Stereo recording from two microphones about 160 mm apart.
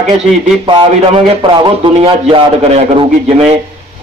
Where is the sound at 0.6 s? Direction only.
30° right (ahead or behind).